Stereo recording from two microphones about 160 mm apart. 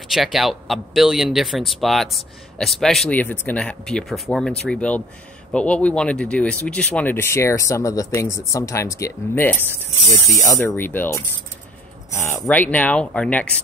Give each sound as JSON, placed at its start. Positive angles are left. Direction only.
{"t": 0.1, "sound": "speech", "side_deg": 0}